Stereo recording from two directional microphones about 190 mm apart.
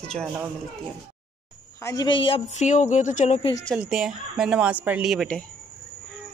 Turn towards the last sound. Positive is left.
turn(degrees=0)  # may be behind; listen again after turning